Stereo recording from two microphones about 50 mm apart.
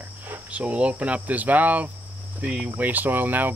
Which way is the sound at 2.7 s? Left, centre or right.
Right.